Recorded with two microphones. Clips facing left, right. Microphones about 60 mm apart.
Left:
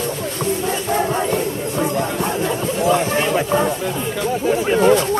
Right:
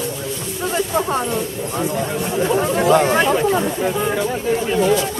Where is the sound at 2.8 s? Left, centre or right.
Right.